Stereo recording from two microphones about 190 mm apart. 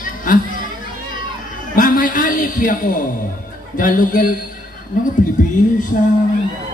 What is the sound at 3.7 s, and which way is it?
Speech, 45° left (ahead or behind).